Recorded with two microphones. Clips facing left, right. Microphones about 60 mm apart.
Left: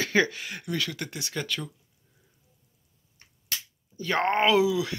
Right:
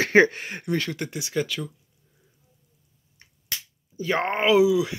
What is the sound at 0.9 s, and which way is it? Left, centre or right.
Speech, centre.